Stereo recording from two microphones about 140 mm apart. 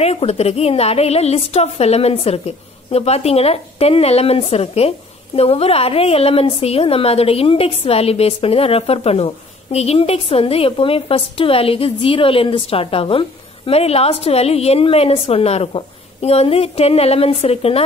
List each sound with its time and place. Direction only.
0.0 s a woman's voice: 50° left (ahead or behind)